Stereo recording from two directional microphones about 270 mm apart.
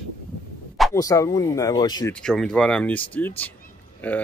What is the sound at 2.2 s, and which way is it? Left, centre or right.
Speech, centre.